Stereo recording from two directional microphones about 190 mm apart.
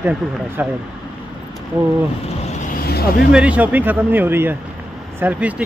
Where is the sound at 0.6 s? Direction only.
10° right (ahead or behind).